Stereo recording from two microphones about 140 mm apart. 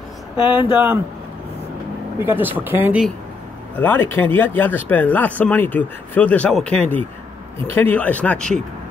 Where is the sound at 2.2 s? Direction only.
15° right (ahead or behind).